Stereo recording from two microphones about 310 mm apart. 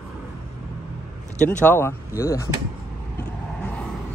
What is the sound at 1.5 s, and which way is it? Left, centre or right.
Speech, centre.